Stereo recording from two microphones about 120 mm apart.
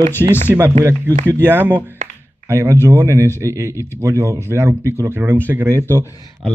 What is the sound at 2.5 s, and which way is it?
Speech, 25° right (ahead or behind).